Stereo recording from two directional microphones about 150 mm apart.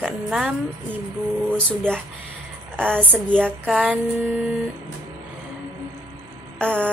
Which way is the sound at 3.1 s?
10° left (ahead or behind).